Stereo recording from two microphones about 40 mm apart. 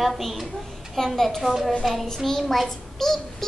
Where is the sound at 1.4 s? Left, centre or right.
Centre.